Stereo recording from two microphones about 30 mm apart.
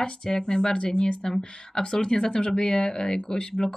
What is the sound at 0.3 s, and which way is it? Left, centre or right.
Speech, left.